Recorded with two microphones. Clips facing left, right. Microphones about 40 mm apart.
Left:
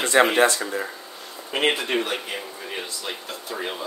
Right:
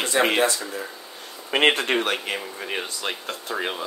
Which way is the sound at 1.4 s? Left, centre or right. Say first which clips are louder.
Right 3 dB; right.